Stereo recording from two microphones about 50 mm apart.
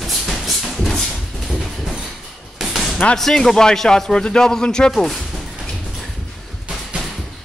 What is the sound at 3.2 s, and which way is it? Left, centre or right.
A man's voice, centre.